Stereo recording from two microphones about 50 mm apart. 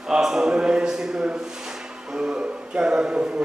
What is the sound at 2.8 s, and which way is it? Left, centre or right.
Speech, centre.